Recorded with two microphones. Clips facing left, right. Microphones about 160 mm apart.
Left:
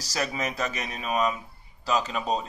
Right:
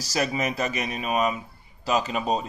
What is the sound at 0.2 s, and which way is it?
Speech, 10° right (ahead or behind).